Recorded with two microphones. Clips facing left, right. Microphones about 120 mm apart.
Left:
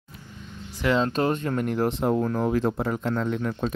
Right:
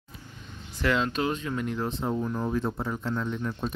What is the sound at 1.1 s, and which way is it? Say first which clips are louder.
Speech: left 5 dB; 50° left (ahead or behind).